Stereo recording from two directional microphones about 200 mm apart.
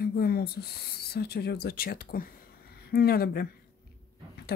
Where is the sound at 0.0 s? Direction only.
50° left (ahead or behind).